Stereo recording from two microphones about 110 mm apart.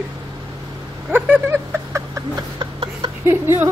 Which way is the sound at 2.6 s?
50° right (ahead or behind).